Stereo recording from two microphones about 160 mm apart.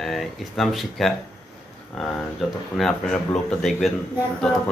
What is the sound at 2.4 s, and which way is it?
Speech, centre (ahead or behind).